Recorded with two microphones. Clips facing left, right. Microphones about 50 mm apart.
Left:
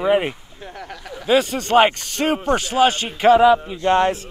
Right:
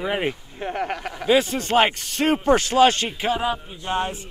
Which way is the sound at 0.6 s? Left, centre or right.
Right.